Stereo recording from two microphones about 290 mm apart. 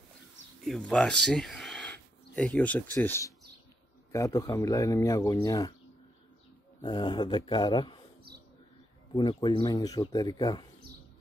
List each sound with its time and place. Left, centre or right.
0.7 s a man's voice: centre
6.8 s a man's voice: centre
9.1 s a man's voice: centre